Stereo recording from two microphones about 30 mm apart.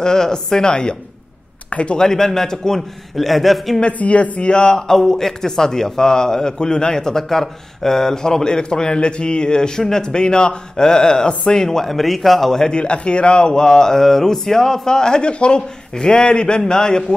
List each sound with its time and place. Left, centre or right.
0.0 s a man's voice: left
1.7 s speech: left
2.0 s a man's voice: centre
3.2 s a man's voice: centre
4.0 s speech: left
4.5 s a man's voice: left
11.8 s a man's voice: centre
12.7 s a man's voice: left
15.2 s a man's voice: left